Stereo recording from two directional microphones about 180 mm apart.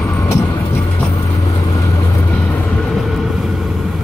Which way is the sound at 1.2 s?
20° left (ahead or behind).